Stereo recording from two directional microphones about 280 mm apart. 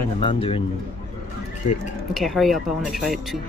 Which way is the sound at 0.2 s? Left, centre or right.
Centre.